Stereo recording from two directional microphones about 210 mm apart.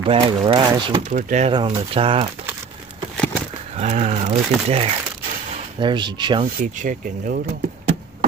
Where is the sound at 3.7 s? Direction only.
30° right (ahead or behind).